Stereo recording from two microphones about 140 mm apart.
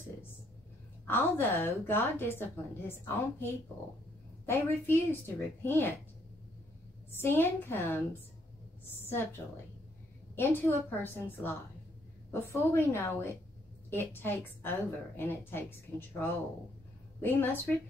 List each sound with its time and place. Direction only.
1.0 s a woman's voice: 15° left (ahead or behind)
7.1 s a woman's voice: 15° left (ahead or behind)
10.3 s a woman's voice: 15° left (ahead or behind)
17.2 s a woman's voice: 15° left (ahead or behind)